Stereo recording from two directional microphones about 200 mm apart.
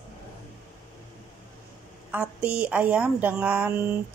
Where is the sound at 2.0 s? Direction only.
5° right (ahead or behind).